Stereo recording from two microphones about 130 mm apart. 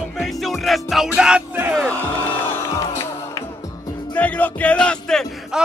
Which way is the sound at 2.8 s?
25° left (ahead or behind).